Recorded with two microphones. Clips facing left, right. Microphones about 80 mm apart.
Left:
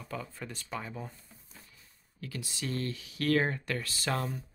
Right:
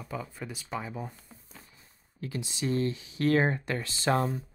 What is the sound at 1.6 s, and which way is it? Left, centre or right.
Speech, right.